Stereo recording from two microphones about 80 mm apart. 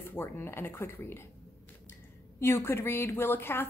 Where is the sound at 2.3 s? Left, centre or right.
Left.